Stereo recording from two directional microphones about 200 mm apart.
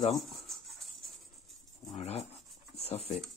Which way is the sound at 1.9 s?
30° left (ahead or behind).